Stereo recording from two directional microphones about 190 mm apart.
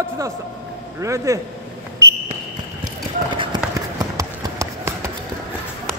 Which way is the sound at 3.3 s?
25° right (ahead or behind).